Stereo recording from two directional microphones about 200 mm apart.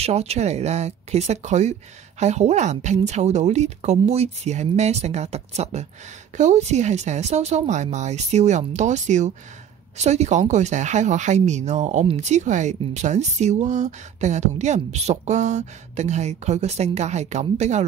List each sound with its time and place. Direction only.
0.0 s speech: 30° right (ahead or behind)